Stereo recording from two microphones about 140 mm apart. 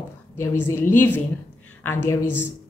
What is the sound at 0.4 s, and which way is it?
A woman's voice, 15° left (ahead or behind).